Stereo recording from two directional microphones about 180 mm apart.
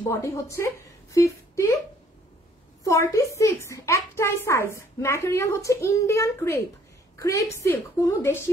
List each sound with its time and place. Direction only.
0.1 s a woman's voice: 15° left (ahead or behind)
2.8 s a woman's voice: 20° left (ahead or behind)